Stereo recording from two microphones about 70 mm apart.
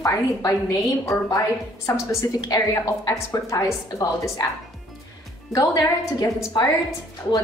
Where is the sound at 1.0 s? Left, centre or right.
Left.